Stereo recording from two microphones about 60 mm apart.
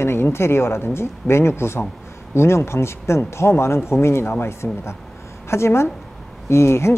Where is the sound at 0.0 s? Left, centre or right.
Left.